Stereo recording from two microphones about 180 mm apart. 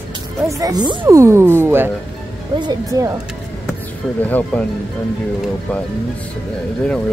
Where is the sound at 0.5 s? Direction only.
20° right (ahead or behind).